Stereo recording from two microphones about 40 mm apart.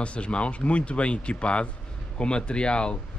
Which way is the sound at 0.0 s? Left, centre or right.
Left.